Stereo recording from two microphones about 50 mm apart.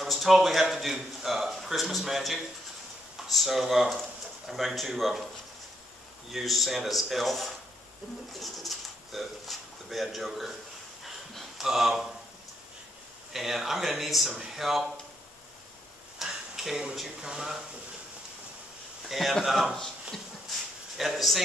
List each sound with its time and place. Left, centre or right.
0.0 s a man's voice: centre
6.3 s speech: centre
11.3 s a sound: centre
13.3 s speech: centre
16.2 s a sound: centre
16.9 s speech: centre
19.0 s a man's voice: centre
21.0 s speech: centre